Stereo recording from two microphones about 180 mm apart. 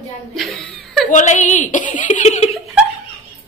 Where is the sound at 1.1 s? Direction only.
45° left (ahead or behind).